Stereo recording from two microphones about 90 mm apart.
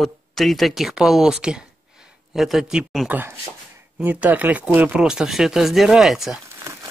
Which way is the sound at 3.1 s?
25° right (ahead or behind).